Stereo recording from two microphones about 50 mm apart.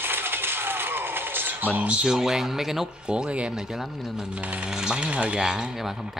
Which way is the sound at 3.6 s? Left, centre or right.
Centre.